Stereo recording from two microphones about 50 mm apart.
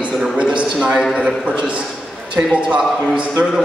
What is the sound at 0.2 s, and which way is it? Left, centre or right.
A man's voice, right.